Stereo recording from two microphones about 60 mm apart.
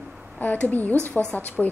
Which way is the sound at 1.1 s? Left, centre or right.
Centre.